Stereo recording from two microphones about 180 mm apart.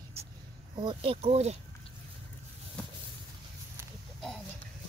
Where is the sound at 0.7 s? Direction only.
30° right (ahead or behind).